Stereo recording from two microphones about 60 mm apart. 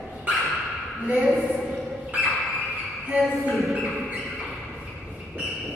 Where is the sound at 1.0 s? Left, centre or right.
Centre.